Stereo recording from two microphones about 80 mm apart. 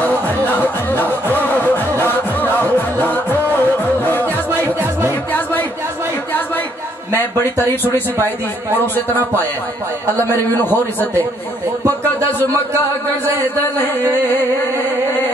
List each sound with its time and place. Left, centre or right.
0.5 s music: left
5.3 s a sound: left
8.7 s speech: left